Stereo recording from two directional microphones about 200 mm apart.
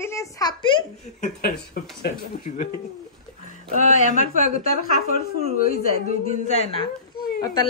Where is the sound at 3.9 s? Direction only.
40° left (ahead or behind).